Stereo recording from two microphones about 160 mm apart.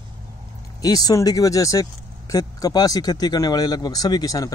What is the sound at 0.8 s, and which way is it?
Speech, 25° left (ahead or behind).